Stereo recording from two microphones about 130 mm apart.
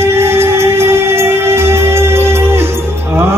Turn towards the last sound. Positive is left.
turn(degrees=-15)  # may be behind; listen again after turning